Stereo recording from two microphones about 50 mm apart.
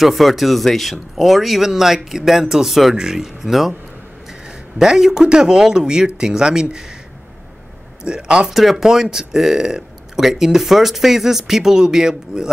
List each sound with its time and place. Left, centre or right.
0.0 s speech: centre
4.7 s speech: centre
8.0 s speech: centre
8.5 s speech: centre